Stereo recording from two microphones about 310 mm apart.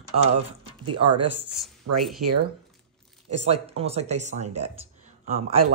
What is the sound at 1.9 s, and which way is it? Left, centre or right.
Speech, right.